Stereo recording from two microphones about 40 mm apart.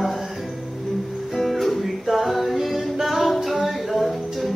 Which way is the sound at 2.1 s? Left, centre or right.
Centre.